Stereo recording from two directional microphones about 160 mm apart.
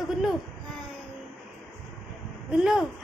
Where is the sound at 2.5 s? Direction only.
5° right (ahead or behind).